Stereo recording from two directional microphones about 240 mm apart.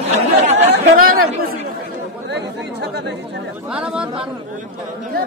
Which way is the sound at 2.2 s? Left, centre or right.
Right.